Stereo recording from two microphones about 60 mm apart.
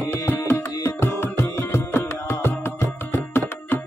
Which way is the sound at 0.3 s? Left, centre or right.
Left.